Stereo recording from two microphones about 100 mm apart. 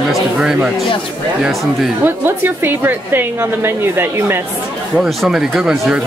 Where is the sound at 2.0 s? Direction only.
20° right (ahead or behind).